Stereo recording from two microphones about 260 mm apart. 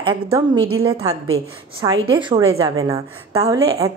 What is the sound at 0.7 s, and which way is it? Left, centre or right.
Speech, right.